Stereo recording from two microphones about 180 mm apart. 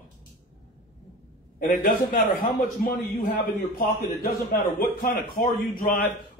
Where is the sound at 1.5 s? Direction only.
50° left (ahead or behind).